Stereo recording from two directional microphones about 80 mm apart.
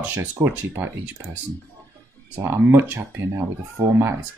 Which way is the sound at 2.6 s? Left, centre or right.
Right.